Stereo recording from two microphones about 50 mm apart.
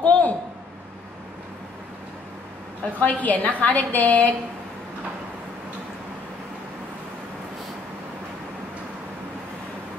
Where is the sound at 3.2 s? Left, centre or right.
Left.